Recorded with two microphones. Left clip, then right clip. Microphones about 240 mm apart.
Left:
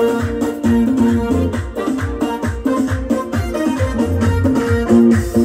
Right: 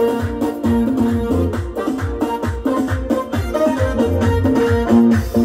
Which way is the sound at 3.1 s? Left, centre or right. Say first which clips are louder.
Even; left.